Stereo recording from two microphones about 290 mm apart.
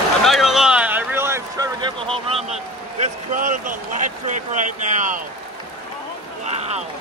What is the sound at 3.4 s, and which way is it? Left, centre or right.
Speech, right.